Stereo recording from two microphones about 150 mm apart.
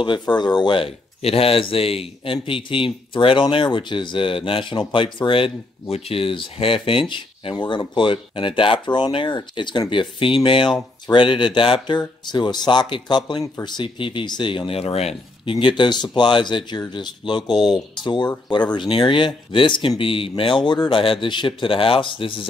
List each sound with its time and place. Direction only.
0.0 s speech: 30° left (ahead or behind)
15.6 s speech: 30° left (ahead or behind)